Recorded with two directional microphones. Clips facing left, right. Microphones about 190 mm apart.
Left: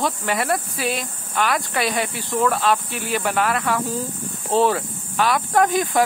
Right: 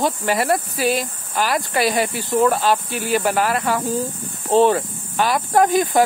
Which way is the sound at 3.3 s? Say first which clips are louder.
Right 2 dB; 35° right (ahead or behind).